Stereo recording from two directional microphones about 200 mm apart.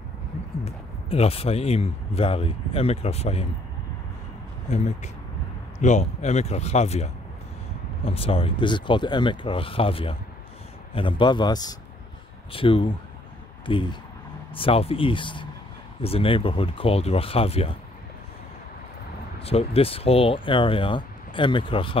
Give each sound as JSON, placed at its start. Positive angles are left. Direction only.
{"t": 0.7, "sound": "speech", "side_deg": 30}
{"t": 4.6, "sound": "speech", "side_deg": 35}
{"t": 19.4, "sound": "speech", "side_deg": 30}